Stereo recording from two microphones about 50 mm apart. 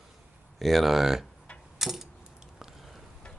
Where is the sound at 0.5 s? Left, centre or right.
Centre.